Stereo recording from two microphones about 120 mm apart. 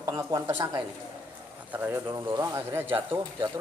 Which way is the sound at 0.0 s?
30° right (ahead or behind).